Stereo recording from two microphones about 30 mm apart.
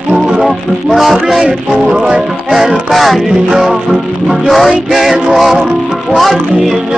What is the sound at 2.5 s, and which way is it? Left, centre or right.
Music, centre.